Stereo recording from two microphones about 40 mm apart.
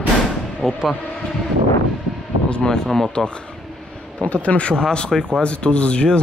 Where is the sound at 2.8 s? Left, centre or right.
Centre.